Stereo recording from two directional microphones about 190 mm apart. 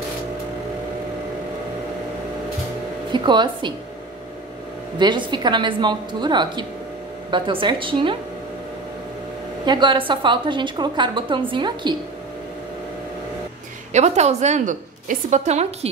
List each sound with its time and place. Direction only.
3.1 s a woman's voice: 25° right (ahead or behind)
4.9 s a woman's voice: 25° right (ahead or behind)
9.7 s a woman's voice: 25° right (ahead or behind)
13.9 s a woman's voice: 35° right (ahead or behind)